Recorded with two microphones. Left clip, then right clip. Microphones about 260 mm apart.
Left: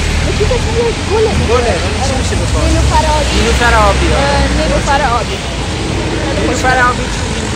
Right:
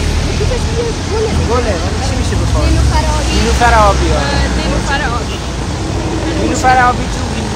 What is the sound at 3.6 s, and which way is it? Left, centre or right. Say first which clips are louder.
Speech: right 2 dB; centre.